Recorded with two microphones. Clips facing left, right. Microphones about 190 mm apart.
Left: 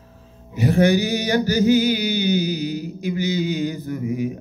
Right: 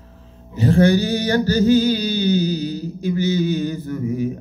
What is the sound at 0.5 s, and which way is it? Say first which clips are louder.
Mantra: right 2 dB; 15° left (ahead or behind).